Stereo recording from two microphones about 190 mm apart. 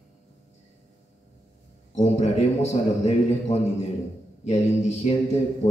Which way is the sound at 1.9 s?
35° left (ahead or behind).